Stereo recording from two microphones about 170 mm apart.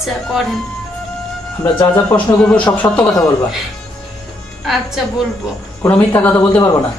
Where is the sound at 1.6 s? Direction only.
10° left (ahead or behind).